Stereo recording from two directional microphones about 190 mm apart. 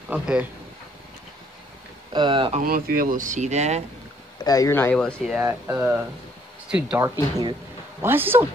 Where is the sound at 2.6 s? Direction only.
50° right (ahead or behind).